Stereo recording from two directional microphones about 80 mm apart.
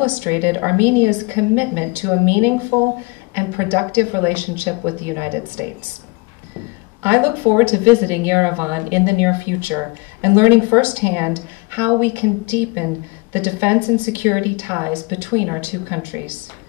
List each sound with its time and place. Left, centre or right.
0.0 s a woman's voice: right
7.0 s a woman's voice: right